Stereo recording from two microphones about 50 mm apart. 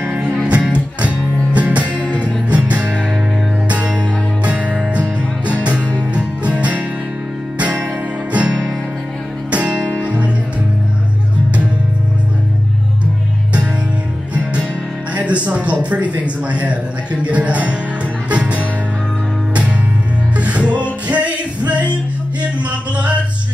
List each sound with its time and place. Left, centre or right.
0.5 s music: right
14.3 s music: right
15.1 s a sound: right
18.3 s music: right
20.3 s music: right